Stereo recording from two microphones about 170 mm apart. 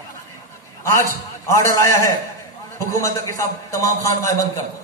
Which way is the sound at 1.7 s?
20° left (ahead or behind).